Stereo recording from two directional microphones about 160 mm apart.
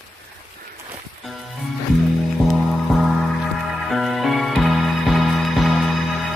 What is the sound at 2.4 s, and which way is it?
Music, centre (ahead or behind).